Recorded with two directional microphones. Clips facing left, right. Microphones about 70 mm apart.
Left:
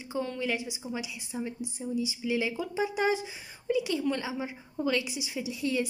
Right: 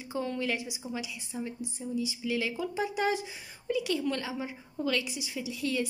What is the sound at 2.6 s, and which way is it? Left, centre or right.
A woman's voice, centre.